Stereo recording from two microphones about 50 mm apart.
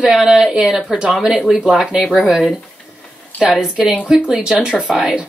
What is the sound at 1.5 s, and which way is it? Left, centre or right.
Speech, centre.